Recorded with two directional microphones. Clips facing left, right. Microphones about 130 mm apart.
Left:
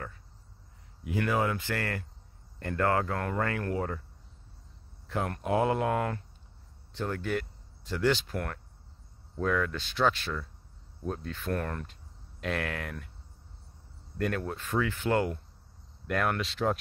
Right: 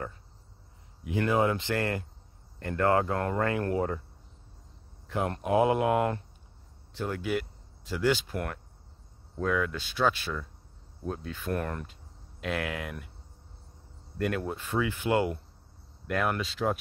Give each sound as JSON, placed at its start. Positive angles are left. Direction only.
{"t": 1.2, "sound": "speech", "side_deg": -25}
{"t": 5.2, "sound": "speech", "side_deg": -20}
{"t": 7.1, "sound": "speech", "side_deg": -5}
{"t": 14.1, "sound": "speech", "side_deg": -10}